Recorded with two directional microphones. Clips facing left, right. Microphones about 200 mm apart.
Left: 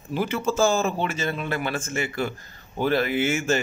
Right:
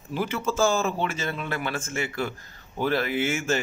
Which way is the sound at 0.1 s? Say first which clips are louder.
Left 3 dB; 20° left (ahead or behind).